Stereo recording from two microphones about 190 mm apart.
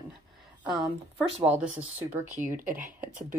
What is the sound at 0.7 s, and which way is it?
A woman's voice, 5° right (ahead or behind).